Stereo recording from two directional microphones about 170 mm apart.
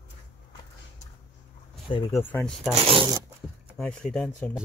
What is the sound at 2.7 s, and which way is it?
Speech, 35° right (ahead or behind).